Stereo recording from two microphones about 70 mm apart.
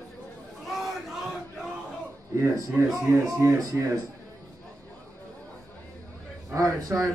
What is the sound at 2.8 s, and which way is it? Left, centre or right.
Speech, right.